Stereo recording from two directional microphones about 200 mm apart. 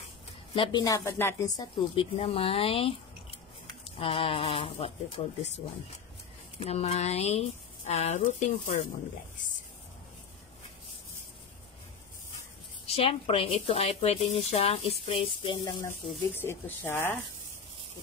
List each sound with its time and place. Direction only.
0.6 s speech: 20° left (ahead or behind)
6.6 s speech: 30° left (ahead or behind)
12.8 s speech: 30° left (ahead or behind); by 17.2 s 10° left (ahead or behind)